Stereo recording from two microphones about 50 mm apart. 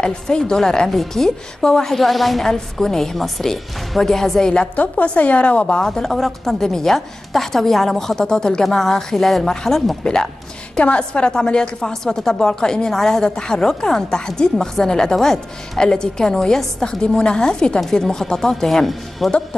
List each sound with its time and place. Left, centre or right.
0.0 s speech: centre
4.7 s a woman's voice: left
5.8 s a woman's voice: centre